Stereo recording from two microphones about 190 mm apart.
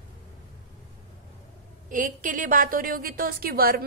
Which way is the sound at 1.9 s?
45° right (ahead or behind).